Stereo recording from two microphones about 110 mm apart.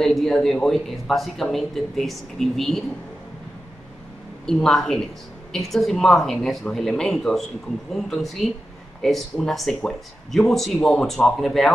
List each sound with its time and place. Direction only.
0.0 s speech: 5° left (ahead or behind)
4.5 s speech: 5° left (ahead or behind)